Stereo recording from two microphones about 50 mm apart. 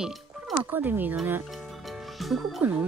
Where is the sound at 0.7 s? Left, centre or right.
Right.